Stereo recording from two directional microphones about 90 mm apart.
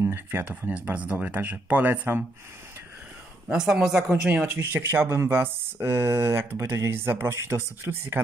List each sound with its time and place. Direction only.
0.0 s speech: 25° right (ahead or behind)
3.4 s a woman's voice: 10° right (ahead or behind)
4.6 s speech: 25° right (ahead or behind)